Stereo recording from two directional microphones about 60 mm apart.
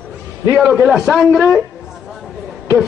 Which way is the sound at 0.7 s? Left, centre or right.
Centre.